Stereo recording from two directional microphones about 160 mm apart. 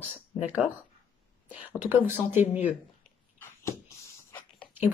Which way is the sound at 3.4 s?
15° left (ahead or behind).